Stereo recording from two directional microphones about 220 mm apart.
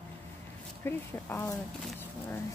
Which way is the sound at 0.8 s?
10° left (ahead or behind).